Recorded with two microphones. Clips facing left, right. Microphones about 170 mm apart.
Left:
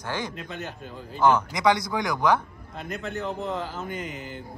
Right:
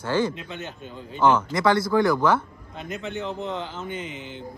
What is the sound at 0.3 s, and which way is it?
Speech, centre (ahead or behind).